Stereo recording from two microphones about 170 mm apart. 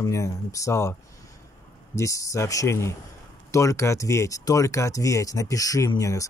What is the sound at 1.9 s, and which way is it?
Speech, 20° left (ahead or behind).